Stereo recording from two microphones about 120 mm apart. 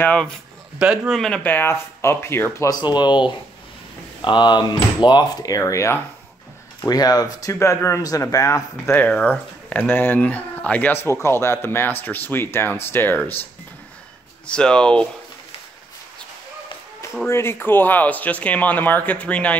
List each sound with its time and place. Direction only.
0.0 s speech: 10° left (ahead or behind)
0.7 s a man's voice: 5° right (ahead or behind)
1.4 s speech: 15° left (ahead or behind)
2.7 s speech: 40° left (ahead or behind); by 13.4 s 15° left (ahead or behind)
14.4 s speech: 10° left (ahead or behind)
17.3 s speech: 20° left (ahead or behind)